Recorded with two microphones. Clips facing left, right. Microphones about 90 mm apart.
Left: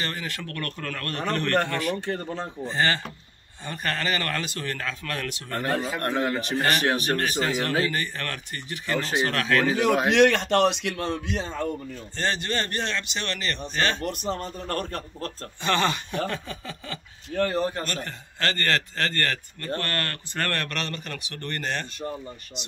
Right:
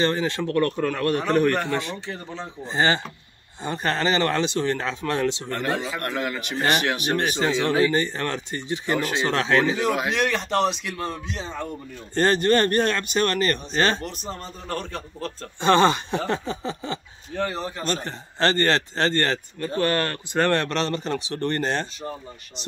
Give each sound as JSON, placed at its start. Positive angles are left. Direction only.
{"t": 0.0, "sound": "a man's voice", "side_deg": -25}
{"t": 1.7, "sound": "speech", "side_deg": -25}
{"t": 2.0, "sound": "a man's voice", "side_deg": 55}
{"t": 2.6, "sound": "speech", "side_deg": -20}
{"t": 5.9, "sound": "speech", "side_deg": 30}
{"t": 7.1, "sound": "speech", "side_deg": -20}
{"t": 10.0, "sound": "a man's voice", "side_deg": 70}
{"t": 12.2, "sound": "speech", "side_deg": -45}
{"t": 14.3, "sound": "a man's voice", "side_deg": 55}
{"t": 15.6, "sound": "speech", "side_deg": -30}
{"t": 17.5, "sound": "a man's voice", "side_deg": 50}
{"t": 17.8, "sound": "speech", "side_deg": -30}
{"t": 19.6, "sound": "speech", "side_deg": -15}